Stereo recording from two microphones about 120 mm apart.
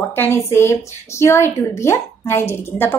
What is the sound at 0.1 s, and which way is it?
A woman's voice, 20° left (ahead or behind).